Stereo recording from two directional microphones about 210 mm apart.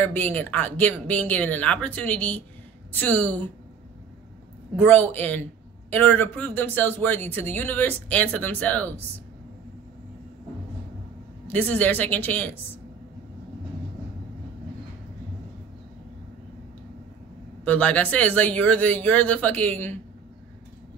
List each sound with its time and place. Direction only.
0.0 s speech: 10° left (ahead or behind)
4.7 s speech: 10° left (ahead or behind)
11.4 s speech: 5° left (ahead or behind)
17.6 s speech: 5° left (ahead or behind)